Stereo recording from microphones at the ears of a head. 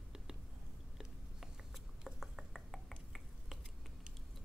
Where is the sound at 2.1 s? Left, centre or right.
Centre.